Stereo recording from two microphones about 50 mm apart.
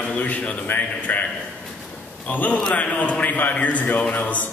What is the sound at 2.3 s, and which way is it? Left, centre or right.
A man's voice, left.